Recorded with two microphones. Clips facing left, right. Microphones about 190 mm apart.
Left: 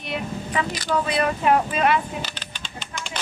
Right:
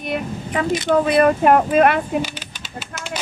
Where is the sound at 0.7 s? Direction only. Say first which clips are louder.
Right 8 dB; 25° right (ahead or behind).